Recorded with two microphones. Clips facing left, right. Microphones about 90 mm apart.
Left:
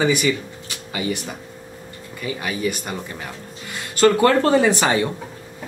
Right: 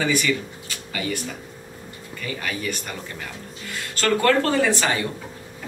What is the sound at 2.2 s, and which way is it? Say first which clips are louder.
Speech: left 5 dB; 15° left (ahead or behind).